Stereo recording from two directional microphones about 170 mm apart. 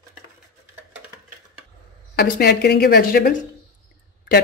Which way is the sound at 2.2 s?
70° left (ahead or behind).